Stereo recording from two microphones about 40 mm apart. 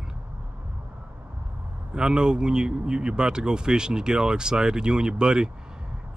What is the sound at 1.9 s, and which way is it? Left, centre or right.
Speech, centre.